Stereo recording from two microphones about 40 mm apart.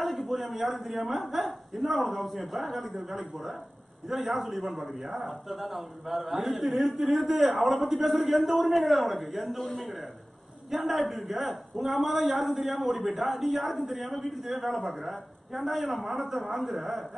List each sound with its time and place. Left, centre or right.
0.0 s a man's voice: centre